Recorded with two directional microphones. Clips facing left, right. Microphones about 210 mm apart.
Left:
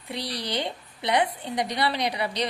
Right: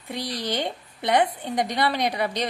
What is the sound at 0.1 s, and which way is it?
A woman's voice, 50° right (ahead or behind).